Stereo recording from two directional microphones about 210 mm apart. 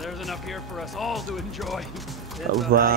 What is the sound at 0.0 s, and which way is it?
Speech, centre (ahead or behind).